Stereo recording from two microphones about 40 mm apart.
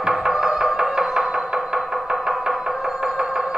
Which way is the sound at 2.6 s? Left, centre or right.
Centre.